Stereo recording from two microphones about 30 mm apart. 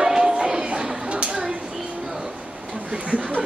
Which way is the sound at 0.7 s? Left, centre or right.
Right.